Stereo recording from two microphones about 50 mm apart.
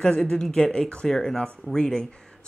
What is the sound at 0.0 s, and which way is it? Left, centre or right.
Speech, centre.